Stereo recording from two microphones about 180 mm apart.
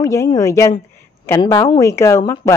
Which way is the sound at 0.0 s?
15° left (ahead or behind).